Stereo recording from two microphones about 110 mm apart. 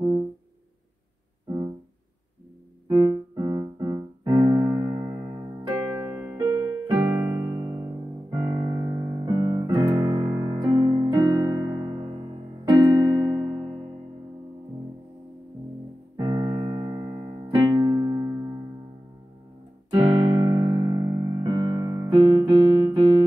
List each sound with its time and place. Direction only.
2.9 s music: 35° right (ahead or behind)
5.7 s music: 20° right (ahead or behind)
9.2 s piano: 45° right (ahead or behind)
12.6 s keyboard: 30° right (ahead or behind)
16.2 s music: 35° right (ahead or behind)
17.6 s music: 30° right (ahead or behind)
19.9 s music: 55° right (ahead or behind); by 21.5 s 35° right (ahead or behind)
21.5 s keyboard: 45° right (ahead or behind)
22.8 s music: 40° right (ahead or behind)